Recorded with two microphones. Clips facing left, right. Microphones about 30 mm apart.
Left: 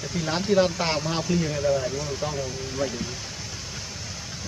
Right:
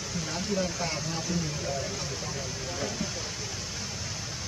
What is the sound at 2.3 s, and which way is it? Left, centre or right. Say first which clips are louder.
Speech: left 5 dB; centre.